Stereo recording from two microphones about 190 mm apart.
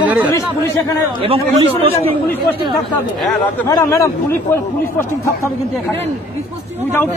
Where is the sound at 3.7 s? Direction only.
15° left (ahead or behind).